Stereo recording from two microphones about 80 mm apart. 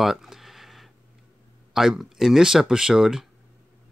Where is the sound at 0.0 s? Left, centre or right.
Centre.